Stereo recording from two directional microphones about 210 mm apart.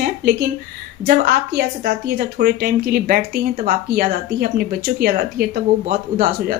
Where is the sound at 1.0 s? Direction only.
45° right (ahead or behind).